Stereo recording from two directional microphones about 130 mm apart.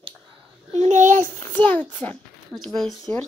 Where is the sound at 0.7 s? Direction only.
65° right (ahead or behind).